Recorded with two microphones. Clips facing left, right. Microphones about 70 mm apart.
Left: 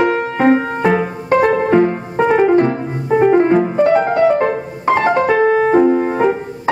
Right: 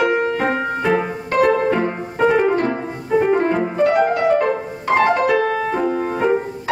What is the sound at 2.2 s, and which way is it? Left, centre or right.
Music, centre.